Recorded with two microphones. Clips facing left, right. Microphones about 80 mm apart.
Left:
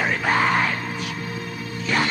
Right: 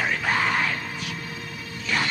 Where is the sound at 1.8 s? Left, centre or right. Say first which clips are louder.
Left 4 dB; left.